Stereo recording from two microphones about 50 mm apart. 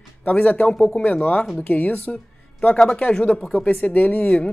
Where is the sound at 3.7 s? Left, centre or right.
Left.